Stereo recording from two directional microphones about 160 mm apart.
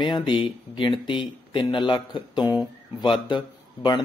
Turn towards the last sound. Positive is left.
turn(degrees=30)  # may be behind; listen again after turning